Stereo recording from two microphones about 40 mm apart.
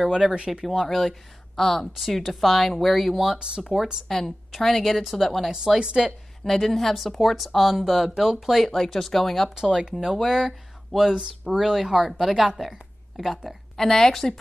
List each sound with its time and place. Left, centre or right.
0.0 s speech: centre
0.7 s a woman's voice: centre
3.3 s speech: centre
3.7 s speech: centre
4.5 s a woman's voice: centre
5.8 s speech: right
6.4 s a woman's voice: centre
8.5 s a woman's voice: centre
9.6 s speech: centre
10.3 s a woman's voice: centre
13.7 s speech: centre